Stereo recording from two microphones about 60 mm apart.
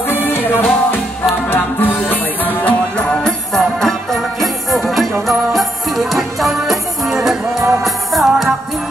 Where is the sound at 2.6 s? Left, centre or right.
Centre.